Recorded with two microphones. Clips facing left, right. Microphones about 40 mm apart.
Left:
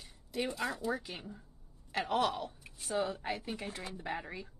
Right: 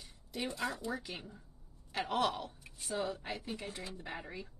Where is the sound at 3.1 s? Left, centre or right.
Left.